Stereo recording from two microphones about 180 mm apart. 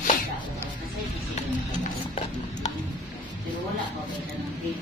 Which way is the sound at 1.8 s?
40° left (ahead or behind).